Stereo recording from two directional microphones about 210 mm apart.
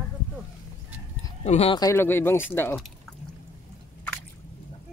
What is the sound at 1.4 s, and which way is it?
Speech, 30° left (ahead or behind).